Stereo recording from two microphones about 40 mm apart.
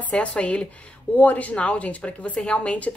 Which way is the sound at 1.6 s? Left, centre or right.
Left.